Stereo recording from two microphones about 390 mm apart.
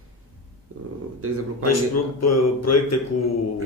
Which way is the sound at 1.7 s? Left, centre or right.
Left.